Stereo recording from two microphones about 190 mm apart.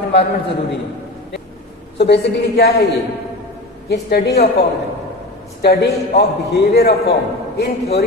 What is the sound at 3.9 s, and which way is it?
Speech, 60° left (ahead or behind).